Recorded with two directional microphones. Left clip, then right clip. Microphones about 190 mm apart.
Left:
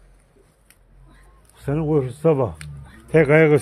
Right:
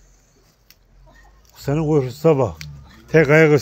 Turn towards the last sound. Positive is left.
turn(degrees=-15)  # may be behind; listen again after turning